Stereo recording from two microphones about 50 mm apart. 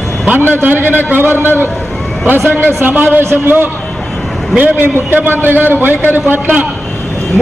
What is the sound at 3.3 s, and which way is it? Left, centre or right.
A man's voice, right.